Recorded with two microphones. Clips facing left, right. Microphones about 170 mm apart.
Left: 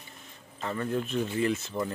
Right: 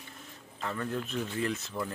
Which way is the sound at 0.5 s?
5° left (ahead or behind).